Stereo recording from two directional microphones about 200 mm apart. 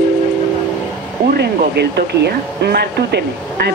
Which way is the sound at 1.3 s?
55° right (ahead or behind).